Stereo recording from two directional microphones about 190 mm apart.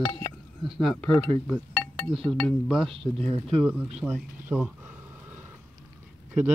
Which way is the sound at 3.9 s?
5° right (ahead or behind).